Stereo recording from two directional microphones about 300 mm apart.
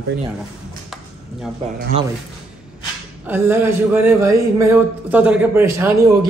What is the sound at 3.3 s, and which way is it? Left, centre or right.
A man's voice, centre.